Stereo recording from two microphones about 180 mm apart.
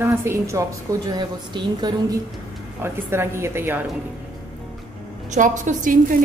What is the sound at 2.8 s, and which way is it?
A woman's voice, 15° right (ahead or behind).